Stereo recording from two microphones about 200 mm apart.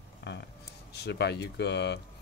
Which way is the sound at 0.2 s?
60° left (ahead or behind).